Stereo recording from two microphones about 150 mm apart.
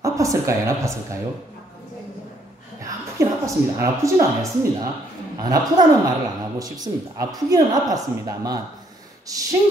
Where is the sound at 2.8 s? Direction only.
20° right (ahead or behind).